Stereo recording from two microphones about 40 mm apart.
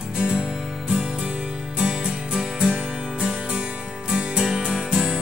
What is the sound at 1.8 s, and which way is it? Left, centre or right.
Music, right.